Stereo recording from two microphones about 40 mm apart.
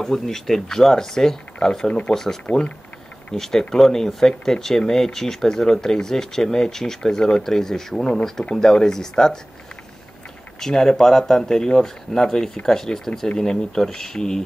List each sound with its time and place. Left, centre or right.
0.0 s speech: centre
1.9 s speech: left
2.5 s speech: left
3.3 s speech: centre
10.6 s speech: centre